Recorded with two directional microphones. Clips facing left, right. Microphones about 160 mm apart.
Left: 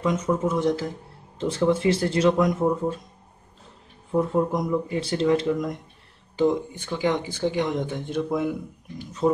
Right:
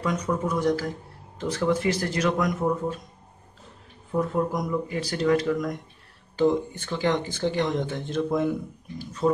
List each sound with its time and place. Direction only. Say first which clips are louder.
0.0 s speech: left 3 dB; 25° left (ahead or behind)
4.1 s speech: left 3 dB; 25° left (ahead or behind)
6.3 s speech: even; 15° left (ahead or behind)
8.9 s speech: left 2 dB; 20° left (ahead or behind)